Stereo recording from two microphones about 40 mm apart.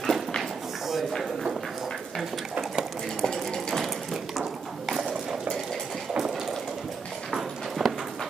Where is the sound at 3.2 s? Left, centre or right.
Centre.